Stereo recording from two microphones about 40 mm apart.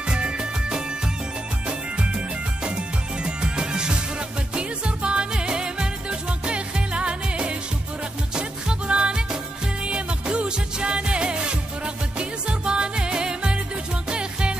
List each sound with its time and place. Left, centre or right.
0.0 s music: right